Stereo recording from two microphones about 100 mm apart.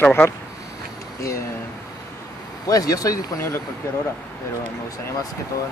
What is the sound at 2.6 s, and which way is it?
Speech, 35° left (ahead or behind).